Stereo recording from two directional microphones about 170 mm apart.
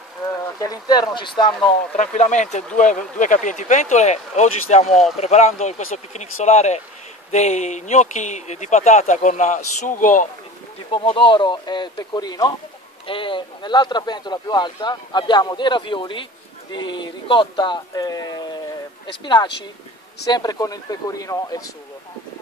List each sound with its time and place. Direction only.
0.6 s speech: 20° left (ahead or behind)
2.0 s speech: 45° left (ahead or behind)
10.9 s speech: 30° left (ahead or behind)